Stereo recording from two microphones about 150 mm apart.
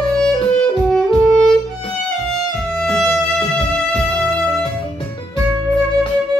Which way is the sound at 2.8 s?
5° left (ahead or behind).